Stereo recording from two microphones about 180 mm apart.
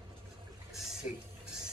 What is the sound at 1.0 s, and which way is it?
Speech, 10° right (ahead or behind).